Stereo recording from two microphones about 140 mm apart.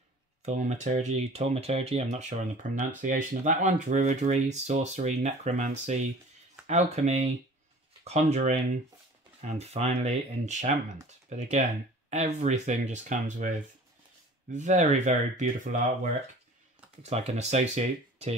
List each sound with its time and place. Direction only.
0.4 s speech: 55° right (ahead or behind)
14.5 s speech: 60° right (ahead or behind)